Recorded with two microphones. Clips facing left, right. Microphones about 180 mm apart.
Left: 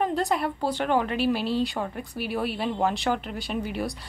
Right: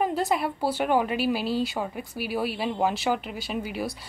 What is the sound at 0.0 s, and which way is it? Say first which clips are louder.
A woman's voice: even; 5° right (ahead or behind).